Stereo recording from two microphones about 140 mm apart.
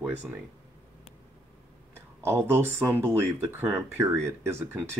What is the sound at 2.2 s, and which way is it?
Speech, 20° right (ahead or behind).